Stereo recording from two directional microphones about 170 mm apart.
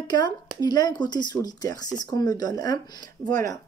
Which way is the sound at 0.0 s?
25° left (ahead or behind).